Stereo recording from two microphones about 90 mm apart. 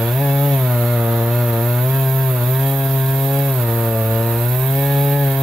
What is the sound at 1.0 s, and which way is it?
Chainsaw, 15° right (ahead or behind).